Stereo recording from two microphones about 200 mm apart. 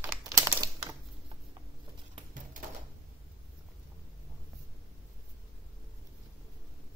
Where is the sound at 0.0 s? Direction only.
15° right (ahead or behind).